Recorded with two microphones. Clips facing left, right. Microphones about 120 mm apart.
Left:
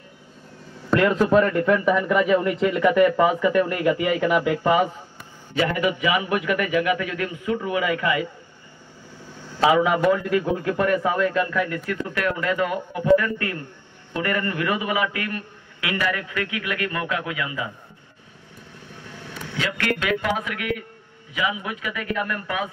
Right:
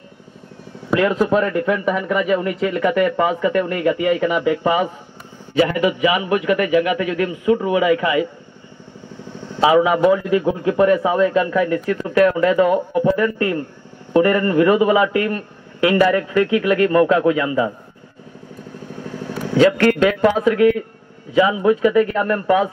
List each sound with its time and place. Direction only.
0.8 s speech: 5° right (ahead or behind)
6.8 s a man's voice: 20° right (ahead or behind)
9.6 s a man's voice: 15° right (ahead or behind); by 17.7 s 35° right (ahead or behind)
19.0 s vehicle: 30° right (ahead or behind)
19.3 s a man's voice: 35° right (ahead or behind)